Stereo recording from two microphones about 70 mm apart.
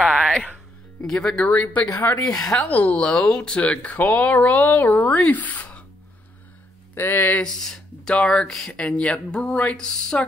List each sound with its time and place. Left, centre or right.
0.0 s music: centre
1.0 s speech: centre
1.4 s speech: left
2.3 s speech: centre
2.7 s speech: left
7.0 s speech: left
7.4 s speech: centre